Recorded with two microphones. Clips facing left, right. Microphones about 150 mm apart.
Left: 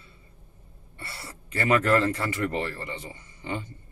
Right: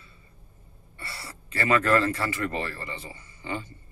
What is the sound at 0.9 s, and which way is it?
Speech, 20° left (ahead or behind).